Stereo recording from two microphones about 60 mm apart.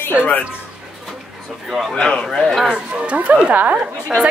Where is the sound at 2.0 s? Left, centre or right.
Centre.